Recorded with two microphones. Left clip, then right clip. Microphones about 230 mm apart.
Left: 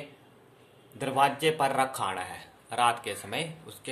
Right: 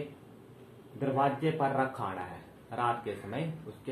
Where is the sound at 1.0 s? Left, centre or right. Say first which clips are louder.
Left 4 dB; left.